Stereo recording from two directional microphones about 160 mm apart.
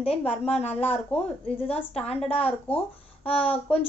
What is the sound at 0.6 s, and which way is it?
Speech, 10° left (ahead or behind).